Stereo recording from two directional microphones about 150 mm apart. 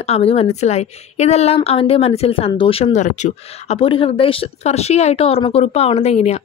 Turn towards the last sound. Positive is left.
turn(degrees=45)  # may be behind; listen again after turning